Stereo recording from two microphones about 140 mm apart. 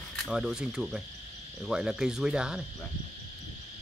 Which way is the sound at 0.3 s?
5° right (ahead or behind).